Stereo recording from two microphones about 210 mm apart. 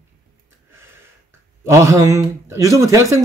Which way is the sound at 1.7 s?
15° right (ahead or behind).